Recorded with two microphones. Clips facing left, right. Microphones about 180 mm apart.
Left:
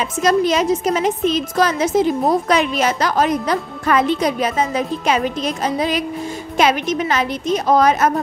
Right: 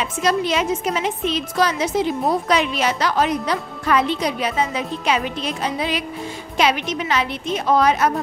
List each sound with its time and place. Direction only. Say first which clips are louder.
0.2 s a woman's voice: left 5 dB; 45° left (ahead or behind)